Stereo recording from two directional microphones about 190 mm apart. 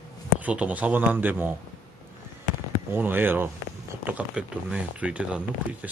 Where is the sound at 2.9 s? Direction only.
10° right (ahead or behind).